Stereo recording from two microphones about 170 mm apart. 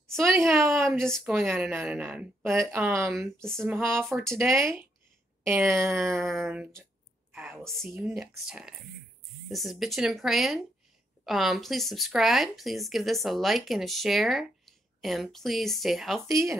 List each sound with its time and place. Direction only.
0.5 s a woman's voice: 15° right (ahead or behind)
0.8 s speech: 5° left (ahead or behind)
1.7 s a woman's voice: 15° right (ahead or behind)
2.4 s speech: centre (ahead or behind)
2.7 s a woman's voice: 15° right (ahead or behind)
3.1 s speech: centre (ahead or behind)
3.5 s a woman's voice: 15° right (ahead or behind)
4.0 s speech: 5° left (ahead or behind)
4.4 s a woman's voice: 15° right (ahead or behind)
7.3 s a sound: 10° right (ahead or behind)
7.6 s speech: centre (ahead or behind)